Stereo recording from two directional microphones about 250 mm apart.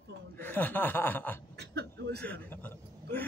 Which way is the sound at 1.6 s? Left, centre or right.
Right.